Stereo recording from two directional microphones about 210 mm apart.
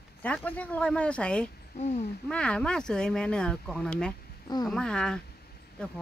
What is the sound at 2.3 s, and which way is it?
Speech, 5° left (ahead or behind).